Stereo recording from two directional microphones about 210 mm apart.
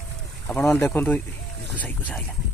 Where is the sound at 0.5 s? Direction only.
10° left (ahead or behind).